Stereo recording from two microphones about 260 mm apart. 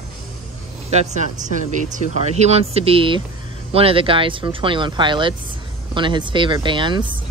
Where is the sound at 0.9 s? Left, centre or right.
Right.